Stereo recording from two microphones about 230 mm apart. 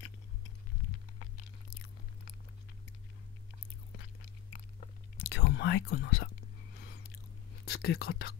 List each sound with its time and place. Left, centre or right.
5.1 s whispering: left
7.6 s speech: left